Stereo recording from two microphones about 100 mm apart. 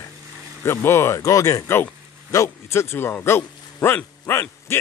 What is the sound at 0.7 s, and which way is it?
Speech, 25° left (ahead or behind).